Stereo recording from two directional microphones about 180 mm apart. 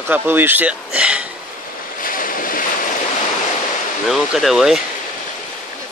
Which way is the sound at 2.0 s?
50° left (ahead or behind).